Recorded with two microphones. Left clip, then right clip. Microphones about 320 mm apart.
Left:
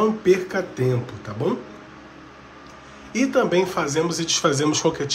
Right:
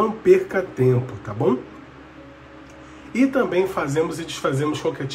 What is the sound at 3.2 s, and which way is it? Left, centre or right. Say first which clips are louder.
Speech: even; centre.